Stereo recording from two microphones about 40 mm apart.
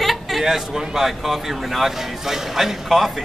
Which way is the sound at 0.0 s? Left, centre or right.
Centre.